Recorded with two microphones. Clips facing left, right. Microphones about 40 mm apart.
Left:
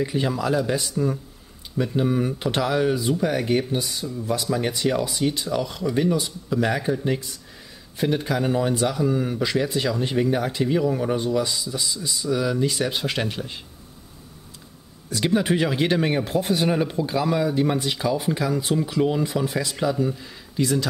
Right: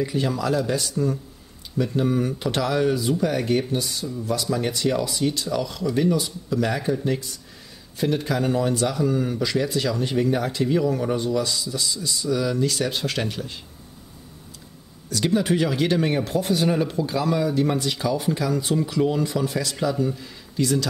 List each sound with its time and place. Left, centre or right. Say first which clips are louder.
0.0 s speech: even; centre
15.0 s speech: even; centre